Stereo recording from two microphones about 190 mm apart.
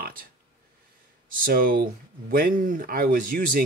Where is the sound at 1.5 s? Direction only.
50° right (ahead or behind).